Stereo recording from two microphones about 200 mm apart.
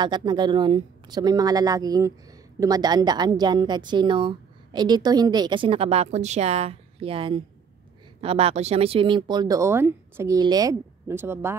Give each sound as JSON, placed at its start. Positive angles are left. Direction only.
{"t": 0.0, "sound": "a woman's voice", "side_deg": -20}